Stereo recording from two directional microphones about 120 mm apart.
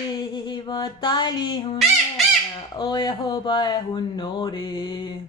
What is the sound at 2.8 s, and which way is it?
Speech, 35° left (ahead or behind).